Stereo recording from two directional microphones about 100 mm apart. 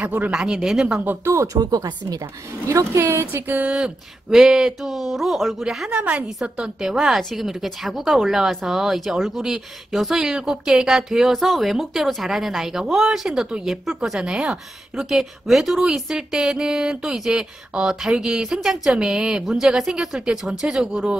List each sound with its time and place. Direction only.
0.0 s speech: 15° right (ahead or behind)
1.0 s speech: 25° right (ahead or behind)
3.8 s speech: 5° right (ahead or behind)